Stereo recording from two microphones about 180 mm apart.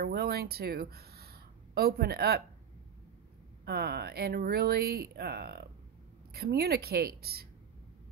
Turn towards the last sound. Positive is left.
turn(degrees=-60)  # may be behind; listen again after turning